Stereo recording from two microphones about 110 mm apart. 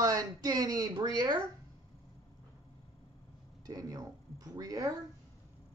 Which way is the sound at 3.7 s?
30° right (ahead or behind).